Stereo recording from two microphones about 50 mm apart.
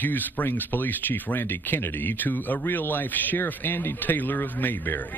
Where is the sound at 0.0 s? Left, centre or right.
Left.